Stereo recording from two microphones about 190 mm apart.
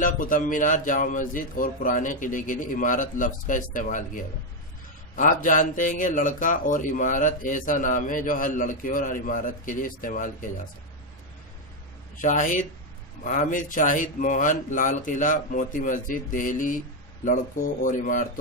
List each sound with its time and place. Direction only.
0.0 s speech: 45° left (ahead or behind)
12.2 s speech: 40° left (ahead or behind)